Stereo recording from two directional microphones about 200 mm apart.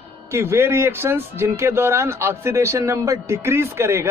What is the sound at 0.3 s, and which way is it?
Speech, 15° right (ahead or behind).